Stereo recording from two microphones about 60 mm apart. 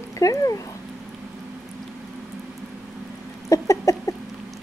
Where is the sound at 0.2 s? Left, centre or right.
Left.